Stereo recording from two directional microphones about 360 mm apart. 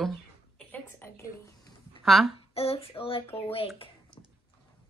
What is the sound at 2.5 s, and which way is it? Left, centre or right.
A child's voice, centre.